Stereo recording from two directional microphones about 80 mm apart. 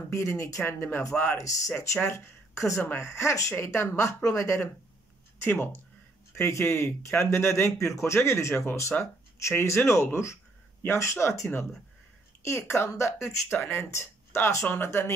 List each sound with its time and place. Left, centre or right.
0.1 s speech: left
1.3 s speech: left
5.4 s speech: left